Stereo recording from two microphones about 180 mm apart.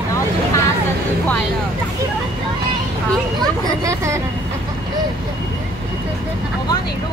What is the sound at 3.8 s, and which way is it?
Speech, 15° right (ahead or behind).